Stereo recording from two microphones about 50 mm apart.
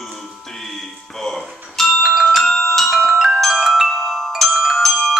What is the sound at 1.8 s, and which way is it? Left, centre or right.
Music, centre.